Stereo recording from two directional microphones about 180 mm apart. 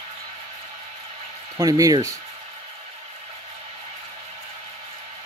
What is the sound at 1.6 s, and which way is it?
Speech, 20° right (ahead or behind).